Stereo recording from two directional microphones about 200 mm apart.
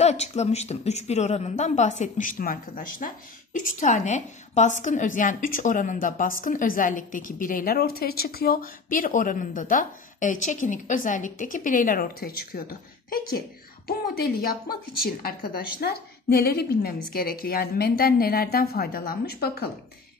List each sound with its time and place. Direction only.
0.0 s a woman's voice: 35° left (ahead or behind); by 19.7 s 50° left (ahead or behind)